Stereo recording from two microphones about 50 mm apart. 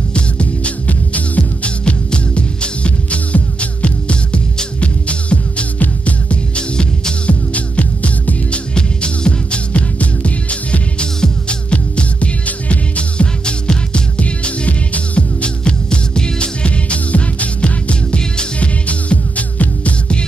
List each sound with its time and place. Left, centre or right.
0.1 s music: left